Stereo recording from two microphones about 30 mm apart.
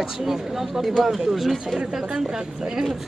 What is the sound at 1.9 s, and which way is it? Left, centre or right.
Speech, centre.